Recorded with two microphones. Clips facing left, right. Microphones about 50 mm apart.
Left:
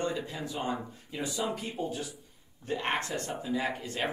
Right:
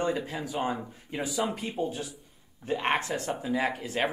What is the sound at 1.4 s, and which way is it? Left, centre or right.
Speech, right.